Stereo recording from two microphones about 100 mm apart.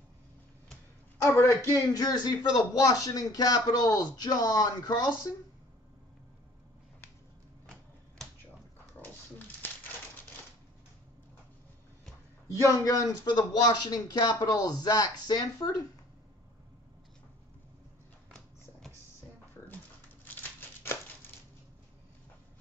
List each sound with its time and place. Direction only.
1.2 s speech: 30° left (ahead or behind)
9.6 s crumpling: 20° left (ahead or behind)
12.4 s speech: 30° left (ahead or behind)
20.2 s a sound: 20° left (ahead or behind)